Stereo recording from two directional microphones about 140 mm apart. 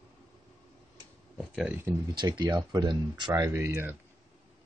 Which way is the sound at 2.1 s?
30° right (ahead or behind).